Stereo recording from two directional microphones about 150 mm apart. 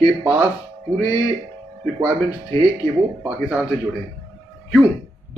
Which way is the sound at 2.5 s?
35° right (ahead or behind).